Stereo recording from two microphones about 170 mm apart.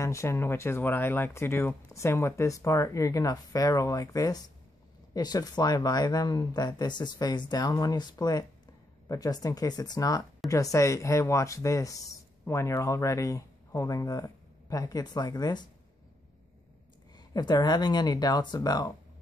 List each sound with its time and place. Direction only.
0.0 s speech: 15° left (ahead or behind)
17.3 s speech: 25° left (ahead or behind)